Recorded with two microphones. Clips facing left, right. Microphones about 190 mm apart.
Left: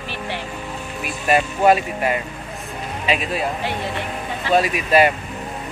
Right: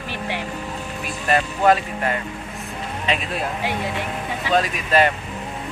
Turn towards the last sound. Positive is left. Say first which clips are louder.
# left 3 dB
turn(degrees=10)  # may be behind; listen again after turning